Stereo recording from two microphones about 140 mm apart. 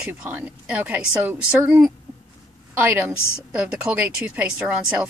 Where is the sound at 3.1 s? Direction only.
20° left (ahead or behind).